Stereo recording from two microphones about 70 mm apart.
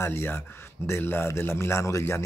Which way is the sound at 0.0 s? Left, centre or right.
Left.